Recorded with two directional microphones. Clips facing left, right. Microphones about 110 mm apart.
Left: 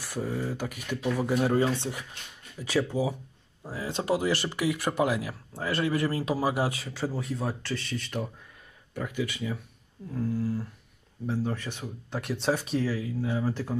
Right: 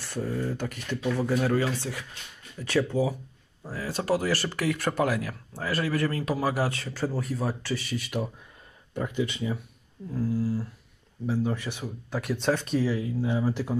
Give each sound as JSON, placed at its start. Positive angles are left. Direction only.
{"t": 0.0, "sound": "speech", "side_deg": 10}
{"t": 2.6, "sound": "speech", "side_deg": 10}
{"t": 6.8, "sound": "speech", "side_deg": 0}
{"t": 8.9, "sound": "speech", "side_deg": -25}
{"t": 10.1, "sound": "speech", "side_deg": -5}
{"t": 12.8, "sound": "speech", "side_deg": -25}